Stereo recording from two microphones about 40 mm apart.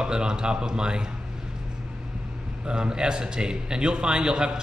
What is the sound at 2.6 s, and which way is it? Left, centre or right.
A man's voice, right.